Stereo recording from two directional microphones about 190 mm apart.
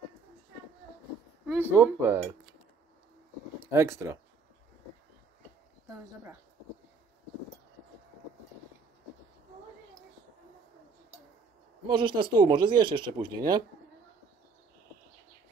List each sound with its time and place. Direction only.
1.6 s speech: 10° right (ahead or behind)
3.7 s speech: 15° right (ahead or behind)
11.9 s speech: 25° right (ahead or behind)